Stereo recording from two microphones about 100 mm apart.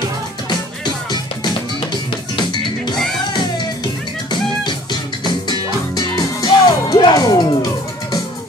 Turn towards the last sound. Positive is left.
turn(degrees=40)  # may be behind; listen again after turning